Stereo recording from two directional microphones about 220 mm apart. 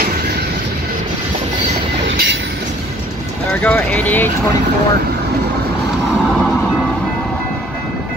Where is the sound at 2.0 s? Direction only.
55° right (ahead or behind).